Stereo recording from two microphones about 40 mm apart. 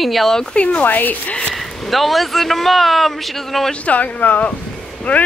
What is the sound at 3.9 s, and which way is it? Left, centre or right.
Speech, left.